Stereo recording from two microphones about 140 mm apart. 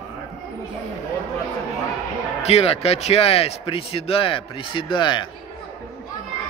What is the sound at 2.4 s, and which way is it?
A man's voice, 45° left (ahead or behind).